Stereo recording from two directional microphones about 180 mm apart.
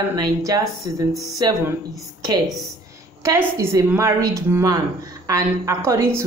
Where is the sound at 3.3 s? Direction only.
15° right (ahead or behind).